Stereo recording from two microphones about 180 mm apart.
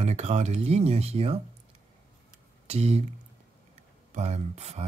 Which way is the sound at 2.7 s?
35° right (ahead or behind).